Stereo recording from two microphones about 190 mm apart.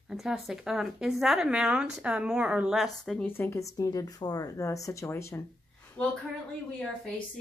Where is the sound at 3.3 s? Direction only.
10° left (ahead or behind).